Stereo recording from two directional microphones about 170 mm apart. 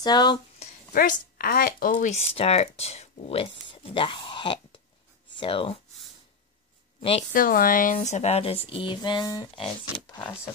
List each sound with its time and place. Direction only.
0.0 s speech: 25° left (ahead or behind)
0.9 s speech: 60° left (ahead or behind); by 5.8 s 30° left (ahead or behind)
7.0 s speech: 35° left (ahead or behind)
7.3 s speech: 55° left (ahead or behind); by 10.5 s 25° left (ahead or behind)